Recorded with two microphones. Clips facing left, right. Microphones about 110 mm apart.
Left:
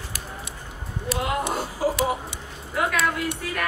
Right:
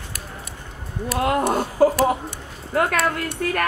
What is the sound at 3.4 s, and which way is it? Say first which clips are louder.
Speech: right 8 dB; 55° right (ahead or behind).